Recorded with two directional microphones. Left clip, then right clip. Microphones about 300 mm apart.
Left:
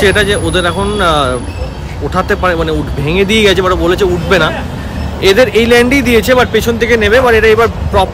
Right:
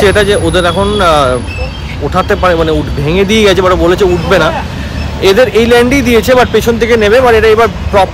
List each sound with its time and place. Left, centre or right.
0.0 s speech: centre